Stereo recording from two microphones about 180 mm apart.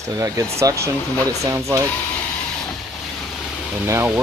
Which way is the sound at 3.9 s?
10° right (ahead or behind).